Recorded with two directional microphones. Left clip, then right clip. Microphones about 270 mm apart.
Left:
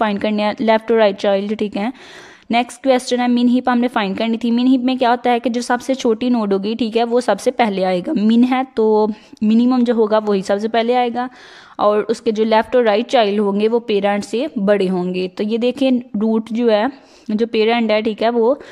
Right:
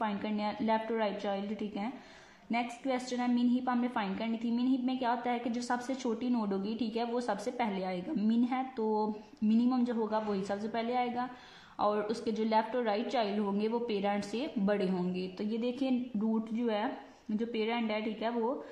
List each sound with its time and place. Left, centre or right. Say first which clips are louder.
0.0 s a woman's voice: left 17 dB; left